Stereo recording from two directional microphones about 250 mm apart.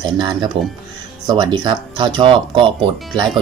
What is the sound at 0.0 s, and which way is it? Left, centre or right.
Speech, centre.